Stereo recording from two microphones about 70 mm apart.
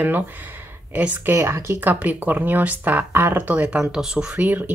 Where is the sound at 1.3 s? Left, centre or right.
Right.